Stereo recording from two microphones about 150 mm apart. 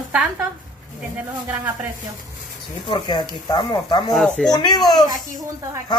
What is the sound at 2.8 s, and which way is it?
Speech, 30° left (ahead or behind).